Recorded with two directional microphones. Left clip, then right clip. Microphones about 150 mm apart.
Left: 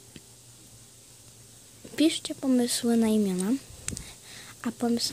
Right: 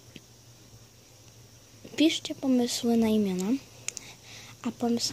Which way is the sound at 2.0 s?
25° left (ahead or behind).